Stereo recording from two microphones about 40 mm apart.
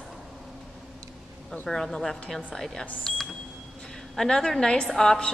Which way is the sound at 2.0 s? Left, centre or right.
Centre.